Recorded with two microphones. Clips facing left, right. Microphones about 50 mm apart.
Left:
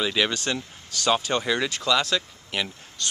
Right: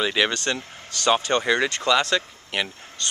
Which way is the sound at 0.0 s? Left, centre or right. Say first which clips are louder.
Right 2 dB; centre.